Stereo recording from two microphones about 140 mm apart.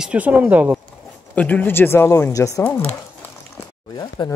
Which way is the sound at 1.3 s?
10° left (ahead or behind).